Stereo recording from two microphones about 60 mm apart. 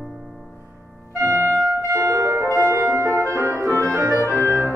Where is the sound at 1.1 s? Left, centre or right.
Right.